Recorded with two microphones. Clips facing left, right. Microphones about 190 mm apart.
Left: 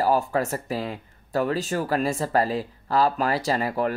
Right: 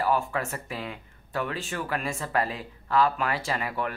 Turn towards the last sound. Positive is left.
turn(degrees=35)  # may be behind; listen again after turning